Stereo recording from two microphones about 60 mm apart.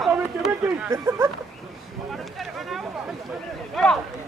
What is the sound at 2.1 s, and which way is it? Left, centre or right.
Boat, centre.